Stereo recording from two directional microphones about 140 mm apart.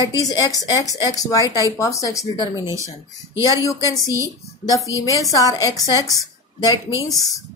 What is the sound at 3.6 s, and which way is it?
A woman's voice, 25° left (ahead or behind).